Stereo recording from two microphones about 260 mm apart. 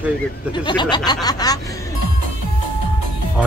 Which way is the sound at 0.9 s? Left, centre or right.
Centre.